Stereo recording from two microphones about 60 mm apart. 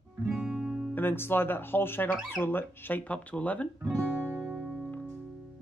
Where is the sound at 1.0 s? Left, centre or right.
Left.